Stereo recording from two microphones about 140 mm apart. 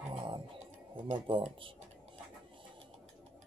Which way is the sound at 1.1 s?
40° right (ahead or behind).